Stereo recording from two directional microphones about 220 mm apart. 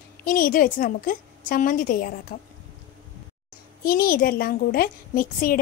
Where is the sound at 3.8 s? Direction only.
40° left (ahead or behind).